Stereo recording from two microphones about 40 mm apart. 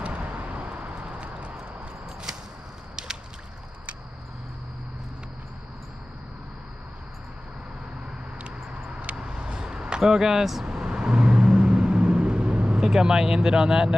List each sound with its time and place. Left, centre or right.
0.0 s vehicle: right
9.0 s vehicle: right
10.0 s speech: centre
10.6 s vehicle: centre
12.8 s speech: centre